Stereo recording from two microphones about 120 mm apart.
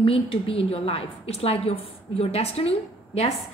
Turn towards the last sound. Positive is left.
turn(degrees=55)  # may be behind; listen again after turning